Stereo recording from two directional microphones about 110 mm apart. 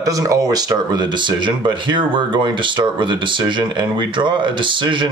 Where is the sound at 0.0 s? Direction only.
30° right (ahead or behind).